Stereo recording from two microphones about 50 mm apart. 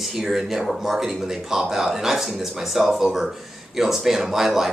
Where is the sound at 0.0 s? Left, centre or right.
Centre.